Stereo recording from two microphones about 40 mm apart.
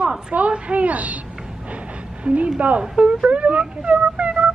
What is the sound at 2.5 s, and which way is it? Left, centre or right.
Speech, right.